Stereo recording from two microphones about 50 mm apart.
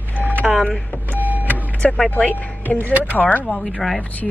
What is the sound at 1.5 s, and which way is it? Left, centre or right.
Vehicle, left.